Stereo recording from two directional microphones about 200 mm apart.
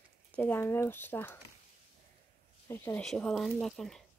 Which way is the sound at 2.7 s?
15° left (ahead or behind).